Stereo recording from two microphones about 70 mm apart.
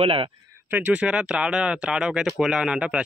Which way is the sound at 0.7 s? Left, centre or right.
Right.